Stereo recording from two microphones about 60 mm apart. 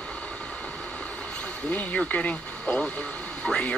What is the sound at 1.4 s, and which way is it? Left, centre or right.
Speech, left.